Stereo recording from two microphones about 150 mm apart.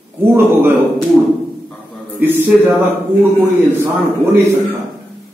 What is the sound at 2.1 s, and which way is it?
Speech, 10° right (ahead or behind).